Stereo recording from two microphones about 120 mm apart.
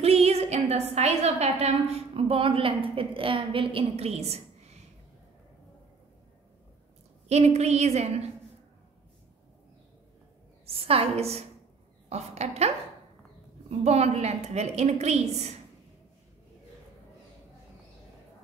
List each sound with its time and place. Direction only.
0.0 s a woman's voice: 60° right (ahead or behind)
7.2 s a woman's voice: 65° right (ahead or behind)
10.7 s a woman's voice: 55° right (ahead or behind)